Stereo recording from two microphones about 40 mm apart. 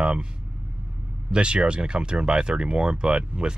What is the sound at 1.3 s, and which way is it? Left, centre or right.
Speech, right.